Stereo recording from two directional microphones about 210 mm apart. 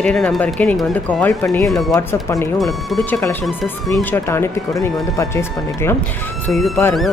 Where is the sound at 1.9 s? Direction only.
15° left (ahead or behind).